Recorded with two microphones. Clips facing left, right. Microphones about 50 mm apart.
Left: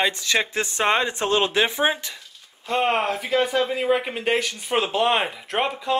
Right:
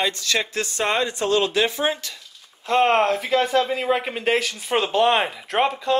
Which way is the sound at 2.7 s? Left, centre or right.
Centre.